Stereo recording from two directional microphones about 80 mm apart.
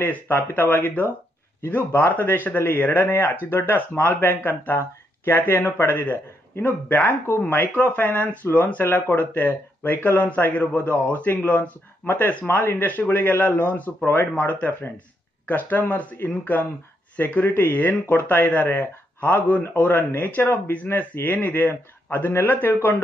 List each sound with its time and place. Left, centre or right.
0.0 s a man's voice: left